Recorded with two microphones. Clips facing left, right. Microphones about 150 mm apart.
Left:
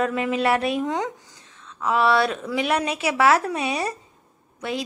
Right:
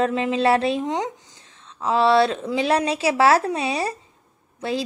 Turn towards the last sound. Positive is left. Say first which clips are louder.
# right 3 dB
turn(degrees=-30)  # may be behind; listen again after turning